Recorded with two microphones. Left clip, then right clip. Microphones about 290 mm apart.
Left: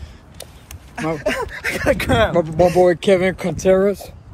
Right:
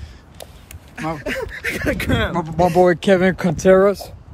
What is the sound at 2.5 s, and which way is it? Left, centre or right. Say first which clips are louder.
Speech: right 1 dB; right.